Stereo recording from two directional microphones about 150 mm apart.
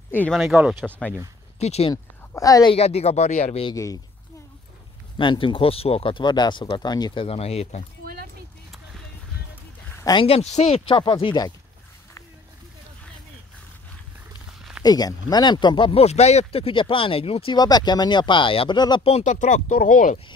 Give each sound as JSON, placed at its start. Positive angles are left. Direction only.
{"t": 0.1, "sound": "speech", "side_deg": 10}
{"t": 0.4, "sound": "speech", "side_deg": -5}
{"t": 0.8, "sound": "speech", "side_deg": 10}
{"t": 1.6, "sound": "speech", "side_deg": 45}
{"t": 2.3, "sound": "a woman's voice", "side_deg": 25}
{"t": 2.7, "sound": "speech", "side_deg": 45}
{"t": 3.7, "sound": "a woman's voice", "side_deg": 20}
{"t": 5.1, "sound": "speech", "side_deg": 30}
{"t": 7.2, "sound": "speech", "side_deg": 40}
{"t": 8.0, "sound": "a sound", "side_deg": -90}
{"t": 10.1, "sound": "speech", "side_deg": 40}
{"t": 14.8, "sound": "speech", "side_deg": 25}
{"t": 19.0, "sound": "speech", "side_deg": 50}